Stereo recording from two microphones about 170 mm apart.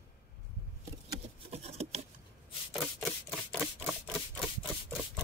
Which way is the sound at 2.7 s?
Centre (ahead or behind).